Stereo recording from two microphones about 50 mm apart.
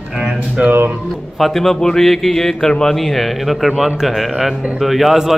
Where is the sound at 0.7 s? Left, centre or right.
Right.